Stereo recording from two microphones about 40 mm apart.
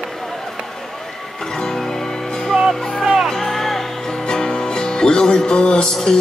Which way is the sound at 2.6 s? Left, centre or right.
Centre.